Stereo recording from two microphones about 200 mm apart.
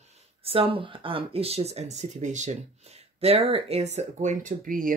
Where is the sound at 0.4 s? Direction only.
25° right (ahead or behind).